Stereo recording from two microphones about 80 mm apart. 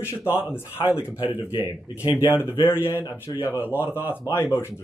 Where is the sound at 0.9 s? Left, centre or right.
Centre.